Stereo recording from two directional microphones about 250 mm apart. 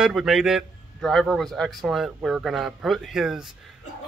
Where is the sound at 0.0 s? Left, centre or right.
Centre.